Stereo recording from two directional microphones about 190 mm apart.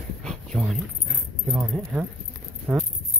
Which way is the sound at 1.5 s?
5° right (ahead or behind).